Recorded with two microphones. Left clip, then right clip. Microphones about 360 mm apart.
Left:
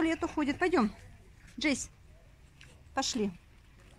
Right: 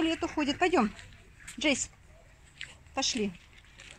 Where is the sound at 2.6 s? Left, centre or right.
Centre.